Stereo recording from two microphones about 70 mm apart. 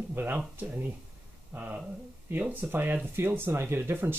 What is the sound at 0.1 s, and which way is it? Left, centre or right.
Speech, right.